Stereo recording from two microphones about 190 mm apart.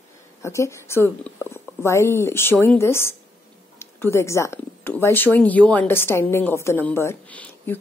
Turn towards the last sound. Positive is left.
turn(degrees=10)  # may be behind; listen again after turning